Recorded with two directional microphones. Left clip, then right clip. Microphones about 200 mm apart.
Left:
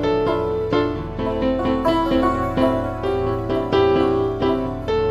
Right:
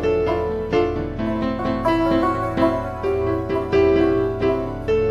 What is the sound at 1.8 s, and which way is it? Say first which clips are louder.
Music: right 1 dB; centre (ahead or behind).